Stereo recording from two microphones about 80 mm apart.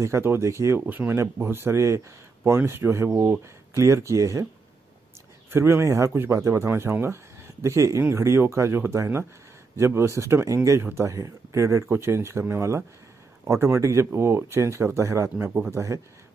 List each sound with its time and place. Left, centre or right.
0.0 s speech: right
0.7 s speech: right
5.5 s speech: right
10.8 s speech: right
11.1 s speech: right